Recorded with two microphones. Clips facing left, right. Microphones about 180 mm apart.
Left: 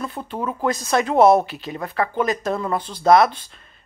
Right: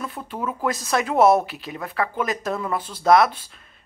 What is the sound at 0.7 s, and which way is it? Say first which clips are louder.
Speech: left 3 dB; centre (ahead or behind).